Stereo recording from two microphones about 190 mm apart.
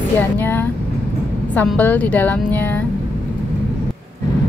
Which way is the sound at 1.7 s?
10° left (ahead or behind).